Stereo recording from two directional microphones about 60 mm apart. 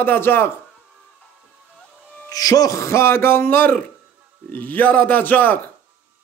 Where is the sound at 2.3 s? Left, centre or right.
Left.